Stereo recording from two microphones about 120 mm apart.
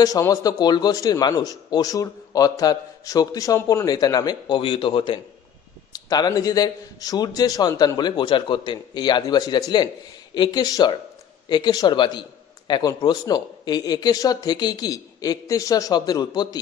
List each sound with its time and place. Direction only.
0.0 s a man's voice: 30° left (ahead or behind); by 5.2 s 45° left (ahead or behind)
5.9 s a man's voice: 35° left (ahead or behind)